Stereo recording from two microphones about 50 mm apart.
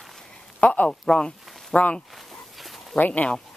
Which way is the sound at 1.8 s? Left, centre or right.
Left.